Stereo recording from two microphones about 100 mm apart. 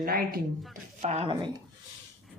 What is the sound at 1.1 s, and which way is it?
Speech, 90° right.